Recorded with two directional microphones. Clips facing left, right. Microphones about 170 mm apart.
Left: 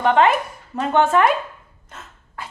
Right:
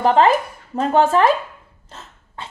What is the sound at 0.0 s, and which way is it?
A woman's voice, 35° right (ahead or behind).